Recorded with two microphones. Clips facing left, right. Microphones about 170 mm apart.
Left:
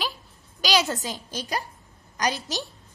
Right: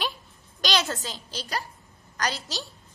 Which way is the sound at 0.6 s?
10° left (ahead or behind).